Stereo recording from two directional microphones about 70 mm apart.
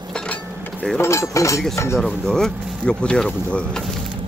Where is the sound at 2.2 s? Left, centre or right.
Centre.